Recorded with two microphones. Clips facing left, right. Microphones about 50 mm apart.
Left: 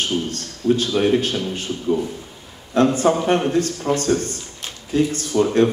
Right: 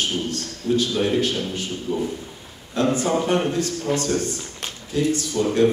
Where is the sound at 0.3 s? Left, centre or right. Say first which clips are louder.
Left 3 dB; left.